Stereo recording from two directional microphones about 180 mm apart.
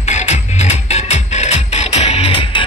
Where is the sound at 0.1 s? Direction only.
40° left (ahead or behind).